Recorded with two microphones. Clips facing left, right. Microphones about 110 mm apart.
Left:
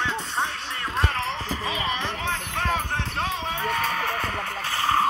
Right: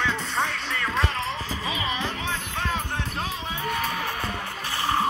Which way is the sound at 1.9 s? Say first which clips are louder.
Left 1 dB; 55° left (ahead or behind).